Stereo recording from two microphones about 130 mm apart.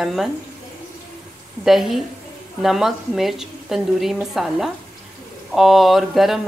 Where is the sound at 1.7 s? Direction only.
Centre (ahead or behind).